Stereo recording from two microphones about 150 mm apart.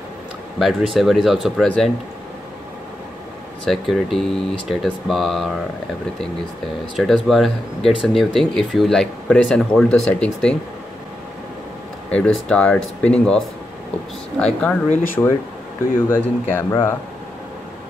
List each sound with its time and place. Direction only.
0.6 s speech: centre (ahead or behind)
3.6 s speech: centre (ahead or behind)
7.0 s speech: centre (ahead or behind)
12.1 s speech: 10° left (ahead or behind)
14.4 s speech: 5° left (ahead or behind)
15.2 s speech: 20° left (ahead or behind)